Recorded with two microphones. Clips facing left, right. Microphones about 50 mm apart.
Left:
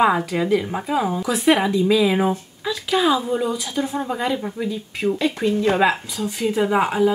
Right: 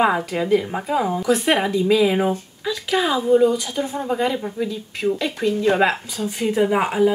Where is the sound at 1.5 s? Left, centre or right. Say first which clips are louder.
Left 4 dB; centre.